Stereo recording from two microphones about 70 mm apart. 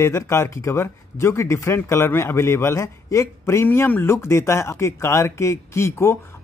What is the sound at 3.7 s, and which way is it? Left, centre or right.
Speech, left.